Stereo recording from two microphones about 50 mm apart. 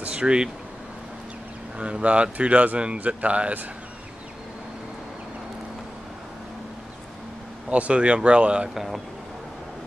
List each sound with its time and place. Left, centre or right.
0.0 s speech: centre
1.8 s speech: right
7.7 s speech: right
8.7 s speech: centre